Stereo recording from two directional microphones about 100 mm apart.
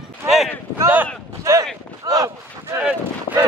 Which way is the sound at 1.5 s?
30° right (ahead or behind).